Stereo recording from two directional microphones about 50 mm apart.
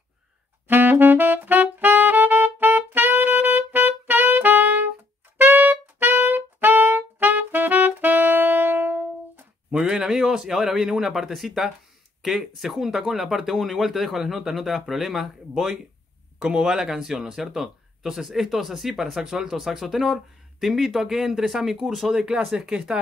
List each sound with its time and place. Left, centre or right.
0.7 s saxophone: right
5.4 s music: right
9.7 s a man's voice: centre
22.7 s speech: centre